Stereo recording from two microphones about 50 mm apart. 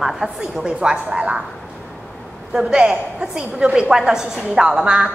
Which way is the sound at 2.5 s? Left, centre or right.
Centre.